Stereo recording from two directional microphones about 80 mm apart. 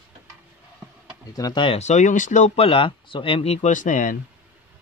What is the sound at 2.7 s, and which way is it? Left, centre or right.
Speech, left.